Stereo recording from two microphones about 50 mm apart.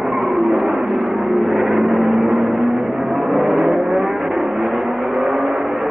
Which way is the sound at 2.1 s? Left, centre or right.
Centre.